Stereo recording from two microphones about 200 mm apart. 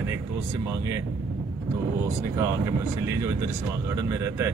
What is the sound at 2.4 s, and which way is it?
Speech, 15° right (ahead or behind).